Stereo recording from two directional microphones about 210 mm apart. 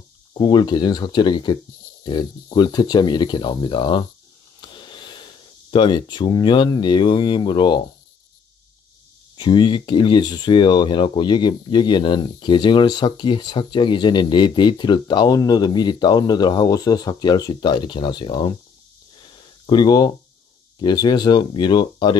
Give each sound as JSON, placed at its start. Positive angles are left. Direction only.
{"t": 0.3, "sound": "speech", "side_deg": 20}
{"t": 9.4, "sound": "speech", "side_deg": 20}
{"t": 19.3, "sound": "a sound", "side_deg": 20}
{"t": 20.8, "sound": "speech", "side_deg": 20}